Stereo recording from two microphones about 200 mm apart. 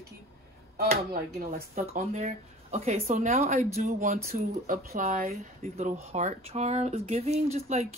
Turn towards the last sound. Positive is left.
turn(degrees=-35)  # may be behind; listen again after turning